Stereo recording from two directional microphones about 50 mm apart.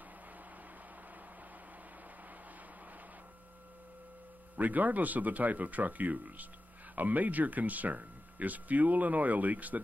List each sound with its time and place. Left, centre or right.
4.6 s speech: right